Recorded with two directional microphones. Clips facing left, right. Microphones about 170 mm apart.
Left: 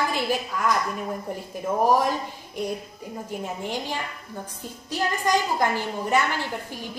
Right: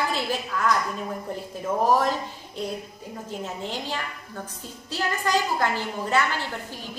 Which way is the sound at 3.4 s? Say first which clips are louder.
Left 2 dB; 15° left (ahead or behind).